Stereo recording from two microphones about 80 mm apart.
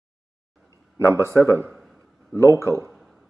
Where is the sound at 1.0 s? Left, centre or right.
Right.